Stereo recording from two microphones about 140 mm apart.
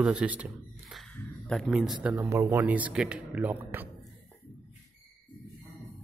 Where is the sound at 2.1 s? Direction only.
20° right (ahead or behind).